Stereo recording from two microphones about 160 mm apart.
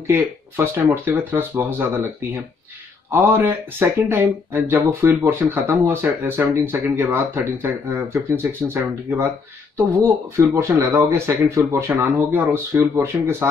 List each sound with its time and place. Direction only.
0.0 s speech: 15° right (ahead or behind)
3.1 s speech: 15° right (ahead or behind)